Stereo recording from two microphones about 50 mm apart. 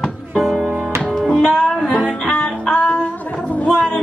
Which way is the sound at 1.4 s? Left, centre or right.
Centre.